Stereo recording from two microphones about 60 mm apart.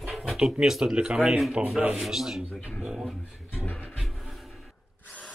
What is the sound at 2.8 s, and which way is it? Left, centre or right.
Speech, centre.